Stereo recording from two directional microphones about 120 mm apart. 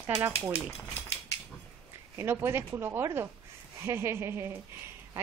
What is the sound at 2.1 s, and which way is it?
Speech, 20° right (ahead or behind).